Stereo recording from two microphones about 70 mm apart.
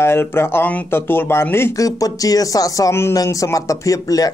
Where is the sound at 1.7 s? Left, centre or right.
Left.